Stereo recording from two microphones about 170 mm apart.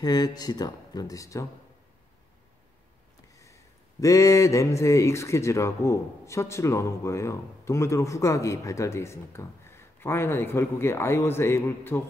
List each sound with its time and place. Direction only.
0.0 s speech: 25° left (ahead or behind)
4.0 s speech: 20° left (ahead or behind)